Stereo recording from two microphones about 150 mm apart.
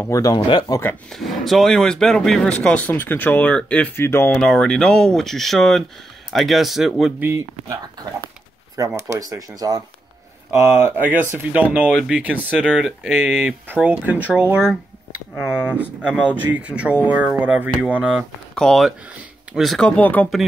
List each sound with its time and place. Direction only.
0.0 s speech: 20° left (ahead or behind)
1.1 s speech: centre (ahead or behind)
4.4 s speech: 5° left (ahead or behind)
8.7 s speech: 20° right (ahead or behind)
10.6 s speech: 15° right (ahead or behind)
18.5 s speech: 5° left (ahead or behind)